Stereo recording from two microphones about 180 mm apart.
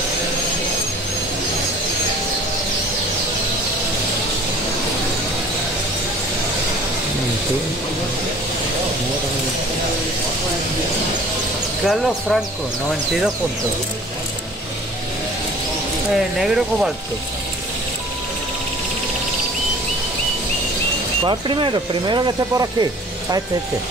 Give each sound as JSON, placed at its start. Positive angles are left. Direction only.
{"t": 11.8, "sound": "speech", "side_deg": 0}
{"t": 16.3, "sound": "speech", "side_deg": -5}
{"t": 21.3, "sound": "speech", "side_deg": -25}